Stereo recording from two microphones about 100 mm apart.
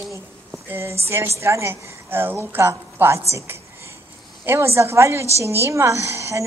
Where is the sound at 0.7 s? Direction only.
25° right (ahead or behind).